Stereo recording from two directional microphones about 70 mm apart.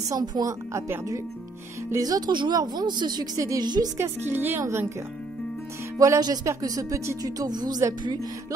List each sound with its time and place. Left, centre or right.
0.1 s speech: right
2.0 s speech: right
3.3 s speech: right
3.6 s speech: right
4.0 s speech: right
4.6 s speech: right
5.9 s speech: right
8.0 s speech: right